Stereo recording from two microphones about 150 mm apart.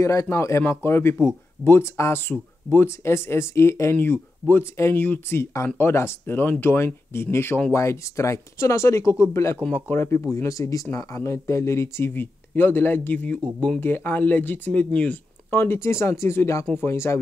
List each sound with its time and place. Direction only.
0.0 s speech: 20° left (ahead or behind)